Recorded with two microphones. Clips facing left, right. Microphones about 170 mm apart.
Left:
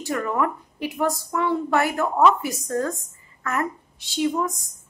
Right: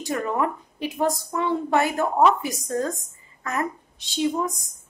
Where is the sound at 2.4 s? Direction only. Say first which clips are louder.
Left 1 dB; 20° right (ahead or behind).